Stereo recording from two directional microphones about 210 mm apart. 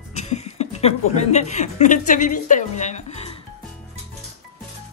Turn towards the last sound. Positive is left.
turn(degrees=30)  # may be behind; listen again after turning